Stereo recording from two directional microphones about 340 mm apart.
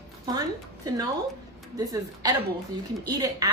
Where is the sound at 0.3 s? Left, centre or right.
Centre.